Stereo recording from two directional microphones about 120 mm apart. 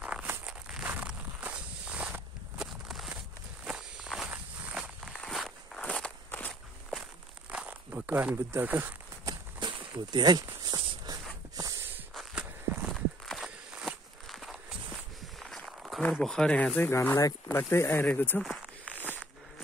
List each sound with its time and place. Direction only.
0.0 s walk: 10° right (ahead or behind); by 6.5 s 10° left (ahead or behind)
7.5 s a sound: 15° right (ahead or behind)
9.6 s walk: 40° right (ahead or behind)
11.5 s snort: 30° right (ahead or behind)
12.1 s walk: centre (ahead or behind)
16.0 s speech: 5° left (ahead or behind)
16.9 s speech: 20° left (ahead or behind)
18.4 s a sound: 5° right (ahead or behind)